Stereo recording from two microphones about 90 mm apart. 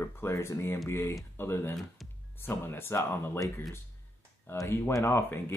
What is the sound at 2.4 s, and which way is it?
Speech, 25° left (ahead or behind).